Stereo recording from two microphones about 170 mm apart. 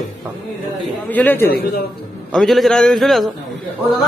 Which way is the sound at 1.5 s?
65° left (ahead or behind).